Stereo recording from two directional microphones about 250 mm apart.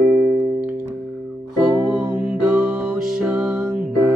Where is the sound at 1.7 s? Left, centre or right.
Centre.